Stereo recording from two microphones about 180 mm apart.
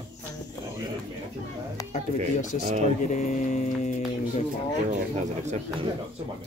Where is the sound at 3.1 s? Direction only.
45° left (ahead or behind).